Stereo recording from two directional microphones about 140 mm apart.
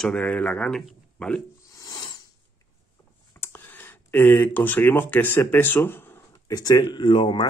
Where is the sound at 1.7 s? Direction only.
25° left (ahead or behind).